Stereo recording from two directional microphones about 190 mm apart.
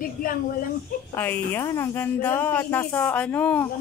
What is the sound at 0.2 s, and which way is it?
Speech, 45° left (ahead or behind).